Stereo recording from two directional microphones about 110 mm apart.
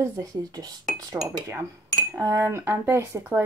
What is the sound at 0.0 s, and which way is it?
Speech, 35° right (ahead or behind).